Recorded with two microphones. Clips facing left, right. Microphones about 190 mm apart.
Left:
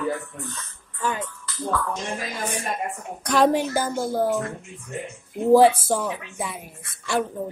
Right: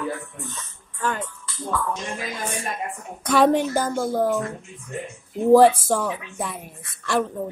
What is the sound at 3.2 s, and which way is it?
A woman's voice, centre (ahead or behind).